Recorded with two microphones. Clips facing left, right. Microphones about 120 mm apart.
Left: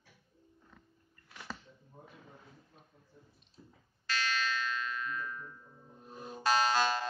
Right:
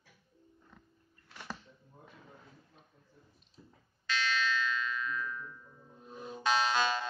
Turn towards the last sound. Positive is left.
turn(degrees=40)  # may be behind; listen again after turning